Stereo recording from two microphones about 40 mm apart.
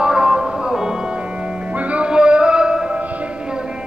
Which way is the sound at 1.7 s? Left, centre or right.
Right.